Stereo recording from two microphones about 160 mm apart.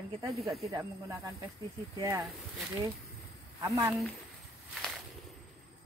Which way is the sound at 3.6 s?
20° right (ahead or behind).